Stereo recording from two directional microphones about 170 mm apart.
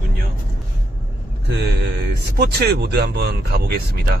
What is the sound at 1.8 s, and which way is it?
Speech, 75° right (ahead or behind).